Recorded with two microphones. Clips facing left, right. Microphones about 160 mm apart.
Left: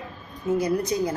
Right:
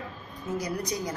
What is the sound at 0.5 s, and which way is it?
Speech, 25° left (ahead or behind).